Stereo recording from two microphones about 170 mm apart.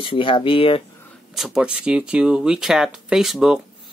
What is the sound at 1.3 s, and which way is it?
Speech, 5° right (ahead or behind).